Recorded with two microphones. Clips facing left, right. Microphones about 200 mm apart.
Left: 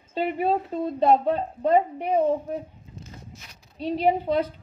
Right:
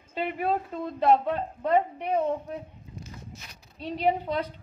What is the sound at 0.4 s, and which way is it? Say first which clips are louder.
A woman's voice: left 3 dB; 30° left (ahead or behind).